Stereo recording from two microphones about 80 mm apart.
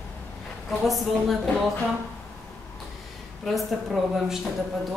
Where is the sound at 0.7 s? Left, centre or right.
Centre.